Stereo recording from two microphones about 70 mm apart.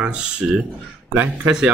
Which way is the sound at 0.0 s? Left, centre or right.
Centre.